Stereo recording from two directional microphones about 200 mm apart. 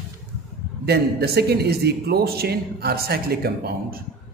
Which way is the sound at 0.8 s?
55° right (ahead or behind).